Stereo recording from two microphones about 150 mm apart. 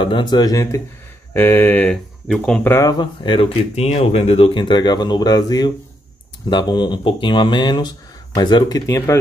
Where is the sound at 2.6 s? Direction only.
20° left (ahead or behind).